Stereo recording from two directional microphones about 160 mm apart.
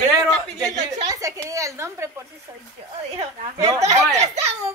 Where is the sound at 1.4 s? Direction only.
20° right (ahead or behind).